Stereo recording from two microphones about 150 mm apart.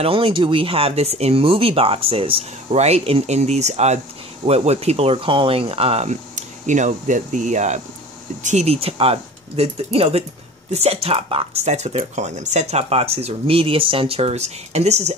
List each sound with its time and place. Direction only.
0.0 s speech: 35° right (ahead or behind)